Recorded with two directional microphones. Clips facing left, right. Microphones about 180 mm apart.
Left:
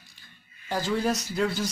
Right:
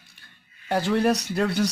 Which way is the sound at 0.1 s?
65° right (ahead or behind).